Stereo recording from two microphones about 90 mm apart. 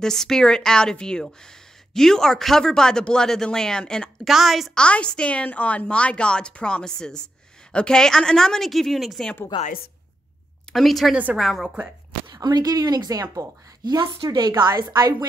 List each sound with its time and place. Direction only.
0.0 s a woman's voice: 5° left (ahead or behind)
4.8 s a woman's voice: 10° left (ahead or behind)
9.5 s a woman's voice: 60° left (ahead or behind)
10.7 s speech: centre (ahead or behind)
12.3 s a woman's voice: 50° right (ahead or behind)